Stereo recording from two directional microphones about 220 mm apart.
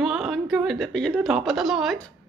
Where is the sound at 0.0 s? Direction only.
Centre (ahead or behind).